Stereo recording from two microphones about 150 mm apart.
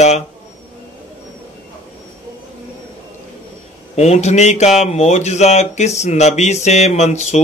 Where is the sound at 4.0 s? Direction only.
45° left (ahead or behind).